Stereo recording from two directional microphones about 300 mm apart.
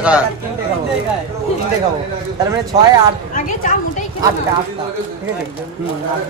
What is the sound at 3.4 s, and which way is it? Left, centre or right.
Speech, left.